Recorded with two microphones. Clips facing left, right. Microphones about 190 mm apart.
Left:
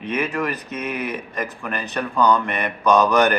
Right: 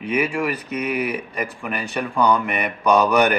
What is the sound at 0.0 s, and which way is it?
Speech, 10° right (ahead or behind).